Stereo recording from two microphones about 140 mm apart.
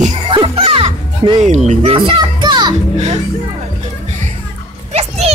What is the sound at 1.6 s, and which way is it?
A child's voice, 40° right (ahead or behind).